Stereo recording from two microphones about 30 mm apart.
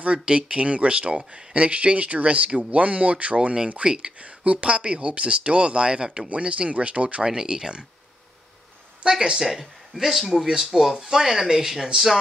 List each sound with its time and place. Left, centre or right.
0.0 s speech: right
3.8 s speech: right
4.2 s speech: right
6.2 s speech: right
7.2 s speech: right
9.0 s speech: right
9.4 s speech: centre